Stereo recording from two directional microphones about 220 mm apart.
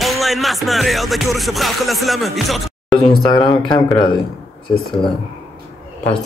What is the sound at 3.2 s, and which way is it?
Speech, 20° left (ahead or behind).